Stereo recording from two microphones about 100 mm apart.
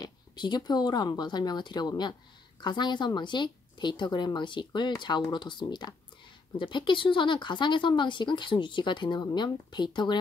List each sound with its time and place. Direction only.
0.0 s speech: 45° left (ahead or behind)